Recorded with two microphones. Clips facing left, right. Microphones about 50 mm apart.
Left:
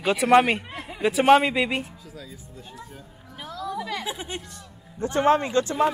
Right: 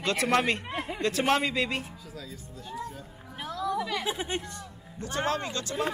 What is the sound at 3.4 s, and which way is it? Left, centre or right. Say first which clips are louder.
Music: right 1 dB; right.